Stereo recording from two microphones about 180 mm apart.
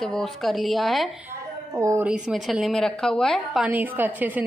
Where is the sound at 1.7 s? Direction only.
15° right (ahead or behind).